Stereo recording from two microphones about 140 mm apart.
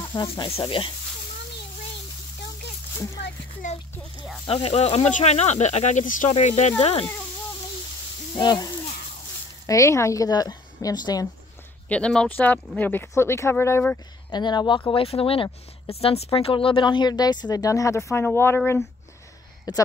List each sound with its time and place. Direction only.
0.0 s sizzle: 30° left (ahead or behind)
3.6 s speech: 65° left (ahead or behind)
4.5 s speech: 45° left (ahead or behind); by 6.3 s 65° left (ahead or behind)
6.3 s speech: 55° left (ahead or behind)
8.4 s sizzle: 30° left (ahead or behind)
9.7 s speech: 20° left (ahead or behind)
11.9 s speech: 5° left (ahead or behind)
14.3 s sizzle: 30° left (ahead or behind)
14.9 s speech: 45° left (ahead or behind); by 18.6 s 15° left (ahead or behind)
19.7 s speech: 30° left (ahead or behind)